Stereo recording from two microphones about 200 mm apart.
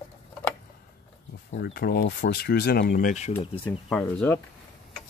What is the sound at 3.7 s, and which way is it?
Speech, 5° left (ahead or behind).